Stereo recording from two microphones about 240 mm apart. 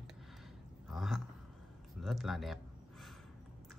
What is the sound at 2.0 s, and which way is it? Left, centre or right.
Speech, centre.